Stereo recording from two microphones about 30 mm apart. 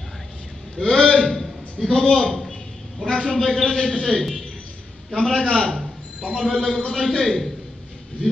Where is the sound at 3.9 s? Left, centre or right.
Left.